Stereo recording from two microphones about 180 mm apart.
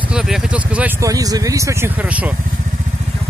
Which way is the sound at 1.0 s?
20° right (ahead or behind).